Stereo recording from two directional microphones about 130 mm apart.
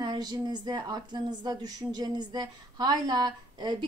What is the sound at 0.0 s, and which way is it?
A woman's voice, 35° right (ahead or behind).